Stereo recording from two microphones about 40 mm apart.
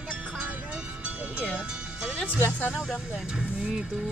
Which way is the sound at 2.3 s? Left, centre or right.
Left.